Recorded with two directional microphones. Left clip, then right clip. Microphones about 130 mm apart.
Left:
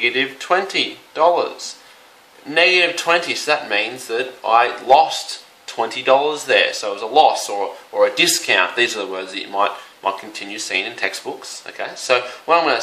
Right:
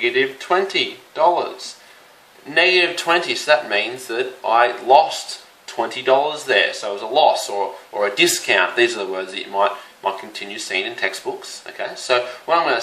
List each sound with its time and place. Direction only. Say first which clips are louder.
0.0 s speech: even; 25° left (ahead or behind)
2.5 s speech: left 1 dB; 25° left (ahead or behind)